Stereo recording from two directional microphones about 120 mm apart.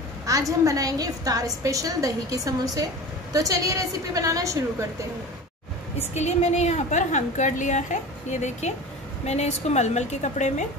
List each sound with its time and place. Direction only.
0.3 s a woman's voice: 30° right (ahead or behind)
5.9 s a woman's voice: 65° left (ahead or behind)